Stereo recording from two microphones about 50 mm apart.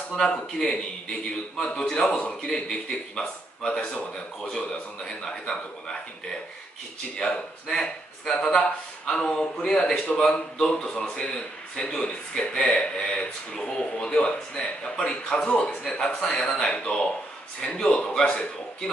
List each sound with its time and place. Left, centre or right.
0.2 s a man's voice: centre
15.0 s a man's voice: centre